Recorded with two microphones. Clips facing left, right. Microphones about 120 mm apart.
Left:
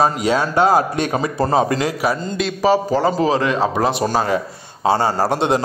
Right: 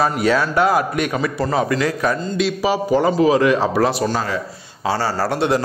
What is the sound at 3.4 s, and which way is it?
A man's voice, 20° left (ahead or behind).